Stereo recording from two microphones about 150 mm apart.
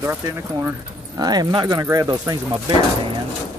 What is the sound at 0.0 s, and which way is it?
Speech, 15° right (ahead or behind).